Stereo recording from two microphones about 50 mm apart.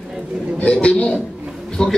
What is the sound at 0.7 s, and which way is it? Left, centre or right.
Speech, left.